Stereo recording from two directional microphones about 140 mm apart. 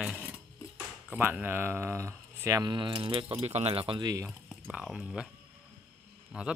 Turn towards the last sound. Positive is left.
turn(degrees=-5)  # may be behind; listen again after turning